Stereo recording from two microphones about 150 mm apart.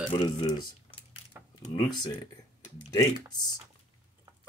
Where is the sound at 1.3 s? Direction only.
15° right (ahead or behind).